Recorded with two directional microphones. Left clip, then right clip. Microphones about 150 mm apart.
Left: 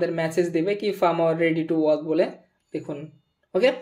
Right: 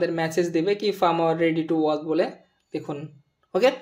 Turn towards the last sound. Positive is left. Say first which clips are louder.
# even
turn(degrees=-10)  # may be behind; listen again after turning